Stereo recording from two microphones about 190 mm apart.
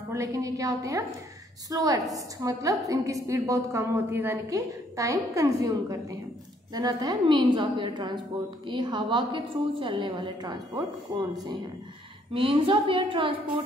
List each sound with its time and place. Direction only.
0.1 s a woman's voice: 15° right (ahead or behind)
12.4 s a woman's voice: 30° right (ahead or behind)